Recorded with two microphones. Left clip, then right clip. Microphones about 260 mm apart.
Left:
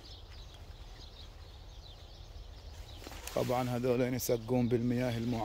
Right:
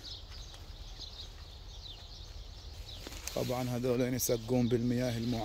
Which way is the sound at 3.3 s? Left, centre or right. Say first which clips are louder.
Left 3 dB; centre.